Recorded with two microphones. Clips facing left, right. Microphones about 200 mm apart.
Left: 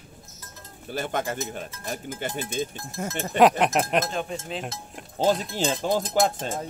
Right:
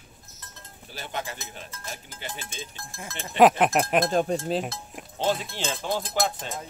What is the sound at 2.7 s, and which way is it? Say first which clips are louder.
Speech: left 5 dB; 20° left (ahead or behind).